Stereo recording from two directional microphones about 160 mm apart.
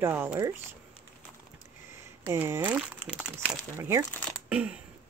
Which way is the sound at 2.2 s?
15° right (ahead or behind).